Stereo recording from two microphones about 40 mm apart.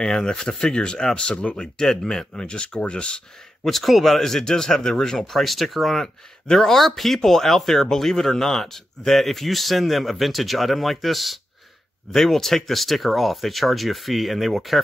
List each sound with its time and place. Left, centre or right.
0.0 s speech: centre
3.6 s speech: centre